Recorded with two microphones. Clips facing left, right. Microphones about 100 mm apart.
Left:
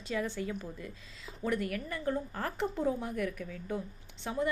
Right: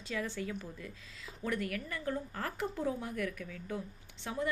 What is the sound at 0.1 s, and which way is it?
A woman's voice, 20° left (ahead or behind).